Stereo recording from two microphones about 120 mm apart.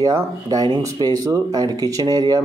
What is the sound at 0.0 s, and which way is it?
A man's voice, 30° right (ahead or behind).